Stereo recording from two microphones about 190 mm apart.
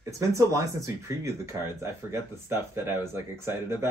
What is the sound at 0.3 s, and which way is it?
Speech, 15° right (ahead or behind).